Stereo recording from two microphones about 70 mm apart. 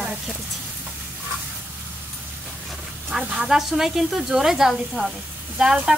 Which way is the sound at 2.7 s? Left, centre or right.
Centre.